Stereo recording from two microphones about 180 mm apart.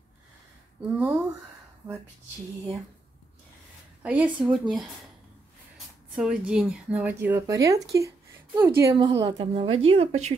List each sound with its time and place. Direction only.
0.8 s speech: 10° right (ahead or behind)
4.0 s a woman's voice: 5° right (ahead or behind)
6.1 s speech: 5° right (ahead or behind)
8.9 s a woman's voice: 25° right (ahead or behind)